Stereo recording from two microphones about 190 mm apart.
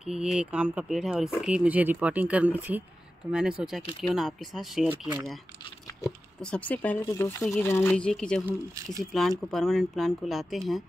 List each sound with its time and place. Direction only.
0.0 s speech: 5° right (ahead or behind)
6.4 s speech: 5° left (ahead or behind)
7.9 s speech: 5° left (ahead or behind)
8.5 s speech: 20° right (ahead or behind)
9.5 s speech: centre (ahead or behind)